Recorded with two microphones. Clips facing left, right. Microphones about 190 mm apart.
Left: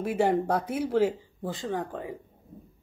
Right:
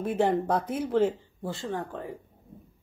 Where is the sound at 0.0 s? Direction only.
10° left (ahead or behind).